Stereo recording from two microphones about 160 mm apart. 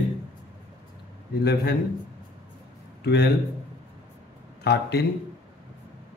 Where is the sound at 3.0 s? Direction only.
90° left.